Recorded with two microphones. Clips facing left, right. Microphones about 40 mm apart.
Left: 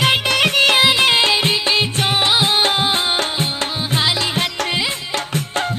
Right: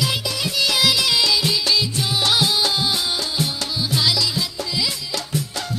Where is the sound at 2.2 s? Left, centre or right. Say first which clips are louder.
Left 1 dB; left.